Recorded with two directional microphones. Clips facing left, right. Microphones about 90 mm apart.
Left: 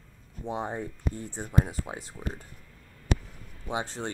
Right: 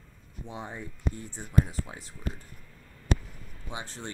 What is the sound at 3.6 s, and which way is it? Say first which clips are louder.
Speech: left 7 dB; 25° left (ahead or behind).